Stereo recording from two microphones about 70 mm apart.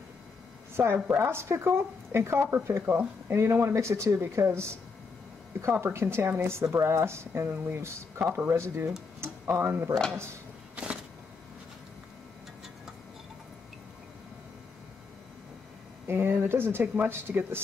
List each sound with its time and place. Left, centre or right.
0.7 s a woman's voice: right
2.9 s a woman's voice: right
16.1 s speech: right
16.8 s speech: right
17.1 s a woman's voice: right